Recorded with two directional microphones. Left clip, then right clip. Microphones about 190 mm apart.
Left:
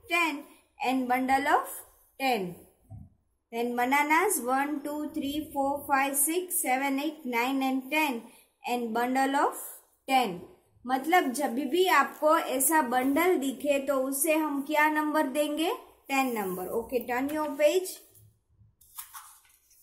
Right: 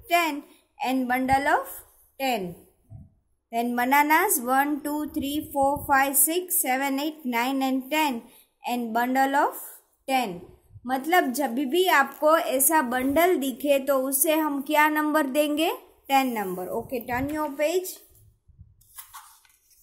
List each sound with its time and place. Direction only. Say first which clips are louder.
0.0 s a woman's voice: right 4 dB; 35° right (ahead or behind)
3.4 s a woman's voice: right 4 dB; 35° right (ahead or behind)